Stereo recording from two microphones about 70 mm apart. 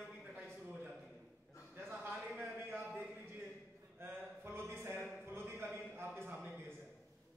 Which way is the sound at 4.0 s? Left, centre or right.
Right.